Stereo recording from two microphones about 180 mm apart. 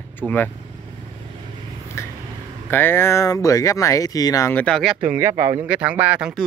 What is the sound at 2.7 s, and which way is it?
Speech, 10° left (ahead or behind).